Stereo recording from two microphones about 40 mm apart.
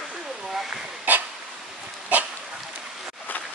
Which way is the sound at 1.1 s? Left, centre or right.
Right.